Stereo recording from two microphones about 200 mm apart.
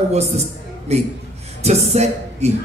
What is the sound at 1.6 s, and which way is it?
Music, 35° right (ahead or behind).